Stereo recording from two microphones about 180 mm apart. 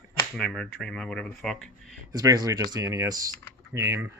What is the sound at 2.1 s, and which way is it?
Speech, 20° right (ahead or behind).